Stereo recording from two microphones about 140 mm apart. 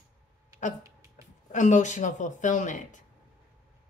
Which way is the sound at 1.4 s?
60° left (ahead or behind).